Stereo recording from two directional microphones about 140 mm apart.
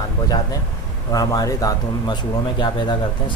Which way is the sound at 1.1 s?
25° left (ahead or behind).